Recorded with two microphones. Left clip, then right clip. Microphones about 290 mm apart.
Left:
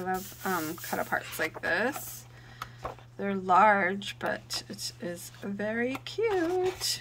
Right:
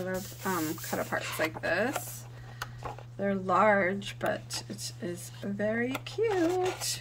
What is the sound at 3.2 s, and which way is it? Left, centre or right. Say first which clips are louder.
Speech: left 3 dB; centre.